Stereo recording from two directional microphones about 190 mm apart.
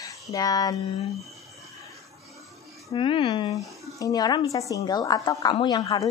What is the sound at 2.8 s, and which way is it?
Speech, 25° left (ahead or behind).